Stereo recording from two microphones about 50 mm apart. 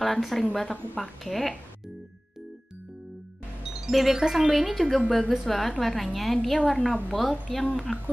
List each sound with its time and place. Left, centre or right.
0.0 s a woman's voice: centre
3.8 s a woman's voice: centre